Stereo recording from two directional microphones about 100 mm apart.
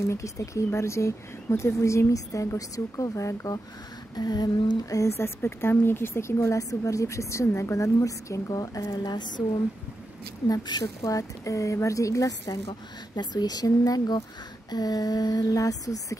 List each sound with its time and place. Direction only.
0.0 s a woman's voice: 30° left (ahead or behind); by 9.4 s 50° left (ahead or behind)
10.5 s a woman's voice: 40° left (ahead or behind)